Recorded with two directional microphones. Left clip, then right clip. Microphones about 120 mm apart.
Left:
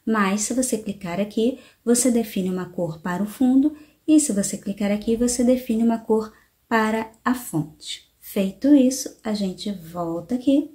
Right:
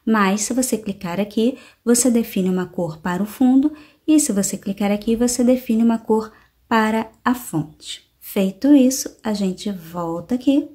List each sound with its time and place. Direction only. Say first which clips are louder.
0.0 s speech: right 4 dB; 30° right (ahead or behind)
8.4 s speech: right 3 dB; 35° right (ahead or behind)